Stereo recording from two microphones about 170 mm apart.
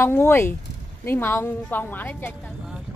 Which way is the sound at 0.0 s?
15° left (ahead or behind).